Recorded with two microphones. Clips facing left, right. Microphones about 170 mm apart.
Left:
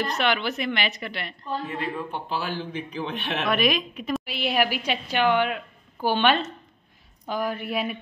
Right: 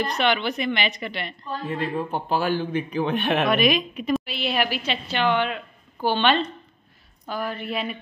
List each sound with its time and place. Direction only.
0.0 s a woman's voice: 5° left (ahead or behind)
1.8 s a man's voice: 40° right (ahead or behind)
3.4 s a woman's voice: centre (ahead or behind)
4.2 s a woman's voice: 15° left (ahead or behind)